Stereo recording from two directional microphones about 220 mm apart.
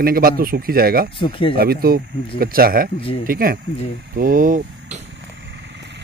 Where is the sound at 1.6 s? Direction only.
45° right (ahead or behind).